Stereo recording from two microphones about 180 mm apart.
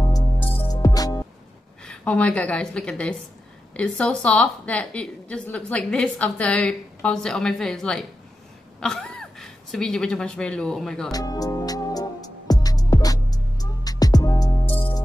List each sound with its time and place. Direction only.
0.6 s music: 20° left (ahead or behind)
1.9 s a woman's voice: 5° left (ahead or behind)
11.1 s music: 20° left (ahead or behind)